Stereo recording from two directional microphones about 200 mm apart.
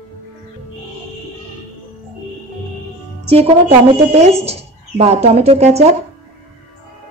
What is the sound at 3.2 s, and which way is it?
Music, 30° right (ahead or behind).